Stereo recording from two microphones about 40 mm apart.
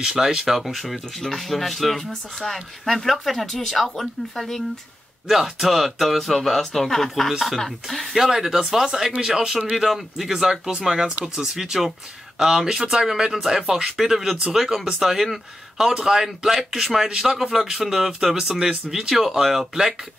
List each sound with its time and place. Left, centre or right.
0.0 s speech: centre
0.5 s speech: centre
8.3 s speech: centre